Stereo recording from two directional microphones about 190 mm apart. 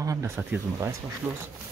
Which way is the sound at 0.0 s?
15° right (ahead or behind).